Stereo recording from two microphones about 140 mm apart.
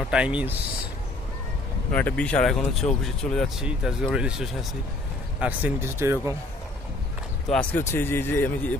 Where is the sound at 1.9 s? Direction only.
10° left (ahead or behind).